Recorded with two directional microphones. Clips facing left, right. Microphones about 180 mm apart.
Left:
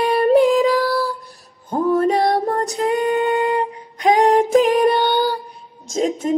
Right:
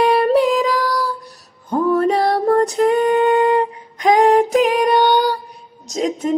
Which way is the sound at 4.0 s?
35° left (ahead or behind).